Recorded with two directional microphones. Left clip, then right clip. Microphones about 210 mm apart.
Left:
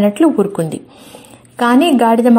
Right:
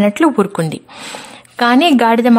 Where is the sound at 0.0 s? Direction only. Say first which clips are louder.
Even; 30° right (ahead or behind).